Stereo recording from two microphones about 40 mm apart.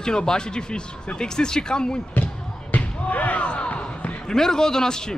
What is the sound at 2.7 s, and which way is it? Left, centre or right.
Basketball bounce, left.